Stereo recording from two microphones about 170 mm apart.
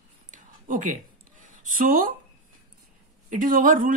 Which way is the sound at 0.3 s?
50° right (ahead or behind).